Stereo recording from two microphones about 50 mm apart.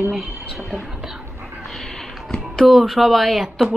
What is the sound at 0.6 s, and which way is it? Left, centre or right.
Whispering, centre.